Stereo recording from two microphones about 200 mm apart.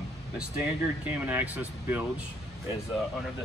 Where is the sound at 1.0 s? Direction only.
5° right (ahead or behind).